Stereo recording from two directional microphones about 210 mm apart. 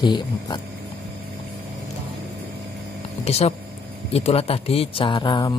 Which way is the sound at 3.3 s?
30° left (ahead or behind).